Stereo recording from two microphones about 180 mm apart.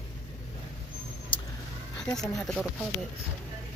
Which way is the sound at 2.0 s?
5° left (ahead or behind).